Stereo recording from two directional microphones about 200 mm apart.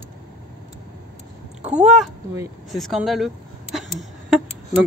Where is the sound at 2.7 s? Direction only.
Centre (ahead or behind).